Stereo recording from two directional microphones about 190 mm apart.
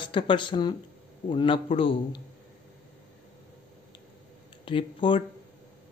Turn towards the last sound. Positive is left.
turn(degrees=25)  # may be behind; listen again after turning